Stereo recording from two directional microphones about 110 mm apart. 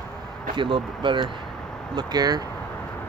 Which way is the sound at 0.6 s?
50° right (ahead or behind).